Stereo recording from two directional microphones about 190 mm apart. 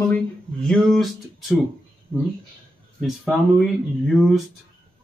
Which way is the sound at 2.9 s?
Centre (ahead or behind).